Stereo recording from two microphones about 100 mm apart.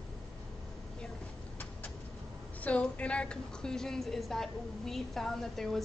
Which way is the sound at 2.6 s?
15° left (ahead or behind).